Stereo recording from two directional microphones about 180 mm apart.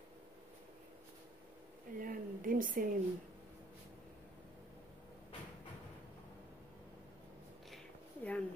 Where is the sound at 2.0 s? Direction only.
50° right (ahead or behind).